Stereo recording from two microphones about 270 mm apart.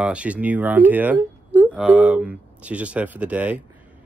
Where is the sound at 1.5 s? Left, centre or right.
Centre.